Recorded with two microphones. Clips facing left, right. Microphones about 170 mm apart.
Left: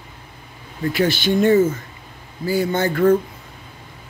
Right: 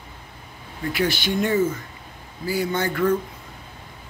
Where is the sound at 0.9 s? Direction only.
30° left (ahead or behind).